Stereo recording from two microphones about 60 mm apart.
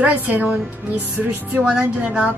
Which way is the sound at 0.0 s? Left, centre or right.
Right.